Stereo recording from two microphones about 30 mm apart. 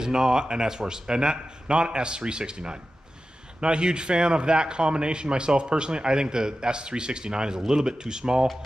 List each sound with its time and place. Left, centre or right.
0.0 s a man's voice: right